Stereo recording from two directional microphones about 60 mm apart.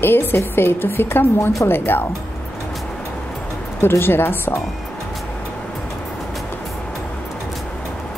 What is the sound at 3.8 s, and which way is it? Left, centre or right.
Speech, left.